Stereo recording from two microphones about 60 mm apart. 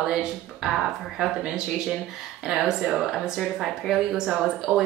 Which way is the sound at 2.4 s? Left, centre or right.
Centre.